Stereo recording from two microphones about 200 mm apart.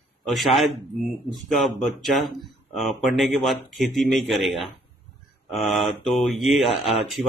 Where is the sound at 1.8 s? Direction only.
Centre (ahead or behind).